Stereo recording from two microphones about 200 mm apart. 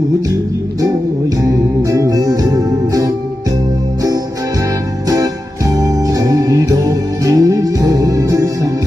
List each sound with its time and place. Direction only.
1.4 s music: 15° right (ahead or behind)
5.0 s music: 15° right (ahead or behind)